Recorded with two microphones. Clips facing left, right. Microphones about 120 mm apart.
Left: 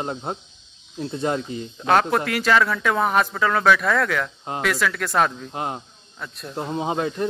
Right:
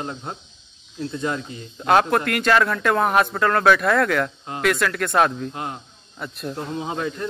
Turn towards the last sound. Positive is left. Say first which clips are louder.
# left 3 dB
turn(degrees=25)  # may be behind; listen again after turning